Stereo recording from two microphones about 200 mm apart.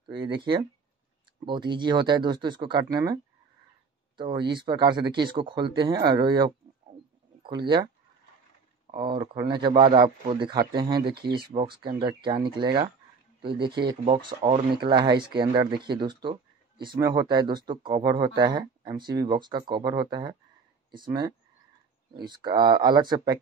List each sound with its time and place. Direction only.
0.0 s speech: 25° right (ahead or behind)
4.2 s speech: 25° right (ahead or behind)
8.9 s speech: 25° right (ahead or behind)